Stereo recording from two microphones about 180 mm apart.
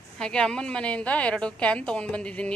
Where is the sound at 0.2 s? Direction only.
5° left (ahead or behind).